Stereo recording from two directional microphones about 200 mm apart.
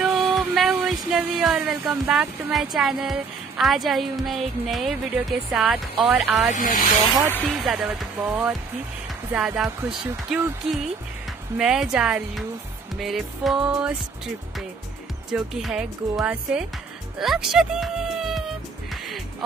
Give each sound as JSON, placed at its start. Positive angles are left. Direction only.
{"t": 0.0, "sound": "speech", "side_deg": 0}
{"t": 6.5, "sound": "speech", "side_deg": 40}
{"t": 7.4, "sound": "speech", "side_deg": 0}
{"t": 9.3, "sound": "speech", "side_deg": -5}
{"t": 15.3, "sound": "speech", "side_deg": -5}